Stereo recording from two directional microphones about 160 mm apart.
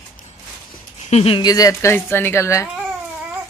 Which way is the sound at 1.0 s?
40° left (ahead or behind).